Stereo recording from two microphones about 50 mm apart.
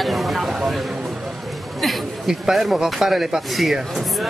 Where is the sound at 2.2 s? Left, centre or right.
Centre.